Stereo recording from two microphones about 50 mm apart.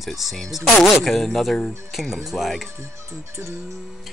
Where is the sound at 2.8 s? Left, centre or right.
Right.